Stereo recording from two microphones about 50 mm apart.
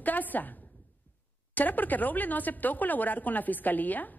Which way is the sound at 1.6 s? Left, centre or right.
Left.